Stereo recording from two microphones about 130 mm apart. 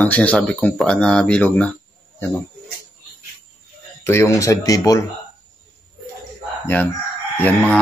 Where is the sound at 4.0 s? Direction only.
20° left (ahead or behind).